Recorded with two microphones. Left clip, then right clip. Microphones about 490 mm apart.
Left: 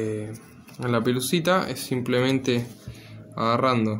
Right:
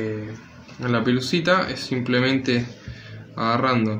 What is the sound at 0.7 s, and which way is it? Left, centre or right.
Speech, left.